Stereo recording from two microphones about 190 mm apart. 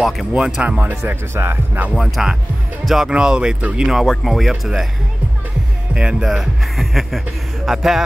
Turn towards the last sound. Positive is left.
turn(degrees=0)  # may be behind; listen again after turning